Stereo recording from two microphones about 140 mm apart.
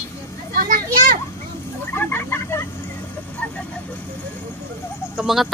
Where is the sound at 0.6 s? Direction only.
70° right (ahead or behind).